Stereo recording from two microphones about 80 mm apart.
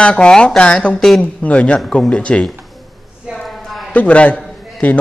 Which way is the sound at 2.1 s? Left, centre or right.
Centre.